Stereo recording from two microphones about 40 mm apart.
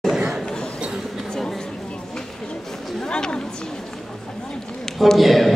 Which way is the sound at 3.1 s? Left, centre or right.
Left.